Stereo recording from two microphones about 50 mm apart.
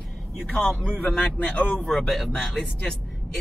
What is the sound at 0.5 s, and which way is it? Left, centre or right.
Speech, left.